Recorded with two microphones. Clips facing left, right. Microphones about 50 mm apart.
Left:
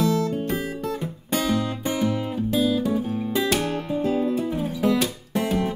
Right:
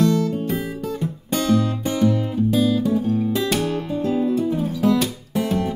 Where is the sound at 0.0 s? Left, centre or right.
Centre.